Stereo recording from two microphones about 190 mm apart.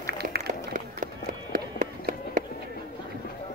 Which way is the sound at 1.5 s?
45° right (ahead or behind).